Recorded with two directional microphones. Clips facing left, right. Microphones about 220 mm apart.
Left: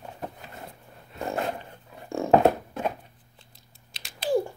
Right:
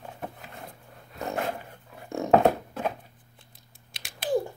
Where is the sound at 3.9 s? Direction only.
50° right (ahead or behind).